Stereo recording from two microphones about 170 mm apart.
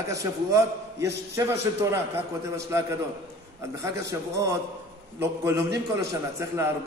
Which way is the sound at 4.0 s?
20° right (ahead or behind).